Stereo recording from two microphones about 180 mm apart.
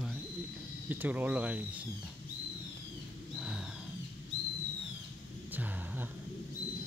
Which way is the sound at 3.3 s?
5° right (ahead or behind).